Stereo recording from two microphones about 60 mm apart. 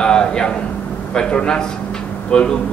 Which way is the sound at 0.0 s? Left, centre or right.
Centre.